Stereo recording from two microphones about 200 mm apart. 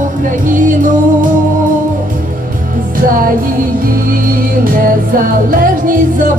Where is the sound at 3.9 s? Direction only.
45° right (ahead or behind).